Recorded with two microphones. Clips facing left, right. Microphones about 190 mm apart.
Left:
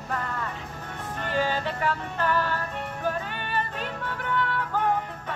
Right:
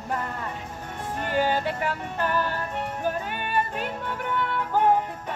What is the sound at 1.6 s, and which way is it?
Music, 15° right (ahead or behind).